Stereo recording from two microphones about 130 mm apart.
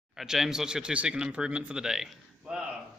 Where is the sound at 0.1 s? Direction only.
Centre (ahead or behind).